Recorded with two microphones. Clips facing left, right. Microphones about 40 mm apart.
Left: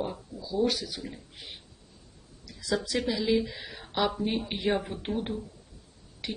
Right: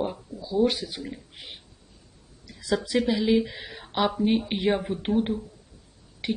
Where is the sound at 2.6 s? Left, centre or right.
Centre.